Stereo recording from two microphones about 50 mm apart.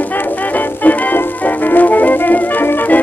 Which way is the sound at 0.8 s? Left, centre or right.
Left.